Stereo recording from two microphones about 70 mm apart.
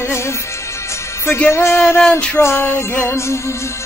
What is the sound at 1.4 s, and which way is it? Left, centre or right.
Music, left.